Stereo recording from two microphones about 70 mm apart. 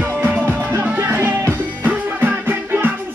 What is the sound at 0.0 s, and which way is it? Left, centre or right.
Music, right.